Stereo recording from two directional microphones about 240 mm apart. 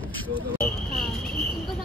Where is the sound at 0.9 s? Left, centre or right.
Centre.